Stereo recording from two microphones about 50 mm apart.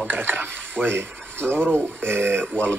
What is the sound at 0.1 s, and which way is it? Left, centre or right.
Speech, right.